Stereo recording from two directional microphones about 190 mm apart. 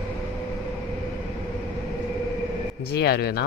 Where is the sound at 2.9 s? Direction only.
60° left (ahead or behind).